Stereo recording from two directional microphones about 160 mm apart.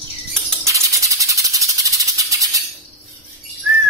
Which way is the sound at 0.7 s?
20° right (ahead or behind).